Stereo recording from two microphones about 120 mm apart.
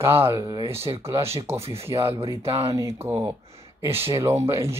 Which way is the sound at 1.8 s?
20° right (ahead or behind).